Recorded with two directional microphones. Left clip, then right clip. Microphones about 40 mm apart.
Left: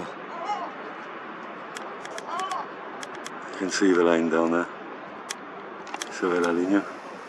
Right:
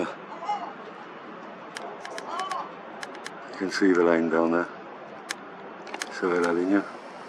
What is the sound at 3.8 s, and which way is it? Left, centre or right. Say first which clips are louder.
Speech: even; left.